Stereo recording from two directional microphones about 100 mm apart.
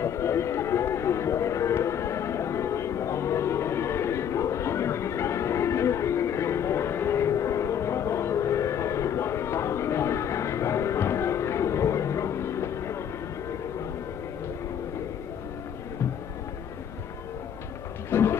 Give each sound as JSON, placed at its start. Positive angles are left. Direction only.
{"t": 0.0, "sound": "music", "side_deg": 30}
{"t": 18.1, "sound": "roaring cats", "side_deg": 25}